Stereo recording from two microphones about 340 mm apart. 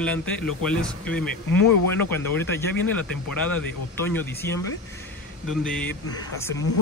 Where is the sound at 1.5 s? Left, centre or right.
Left.